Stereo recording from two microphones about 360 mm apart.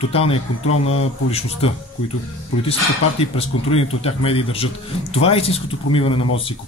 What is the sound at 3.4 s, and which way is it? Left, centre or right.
Speech, centre.